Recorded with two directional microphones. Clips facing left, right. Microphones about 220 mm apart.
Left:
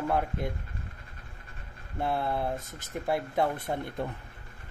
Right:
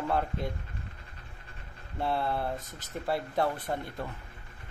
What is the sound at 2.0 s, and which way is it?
Speech, 15° left (ahead or behind).